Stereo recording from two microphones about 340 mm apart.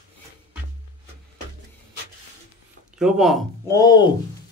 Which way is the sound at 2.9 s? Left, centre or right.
Centre.